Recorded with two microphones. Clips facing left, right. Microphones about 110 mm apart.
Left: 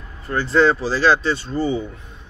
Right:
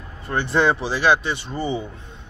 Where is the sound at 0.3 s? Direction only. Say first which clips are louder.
Left 3 dB; 25° right (ahead or behind).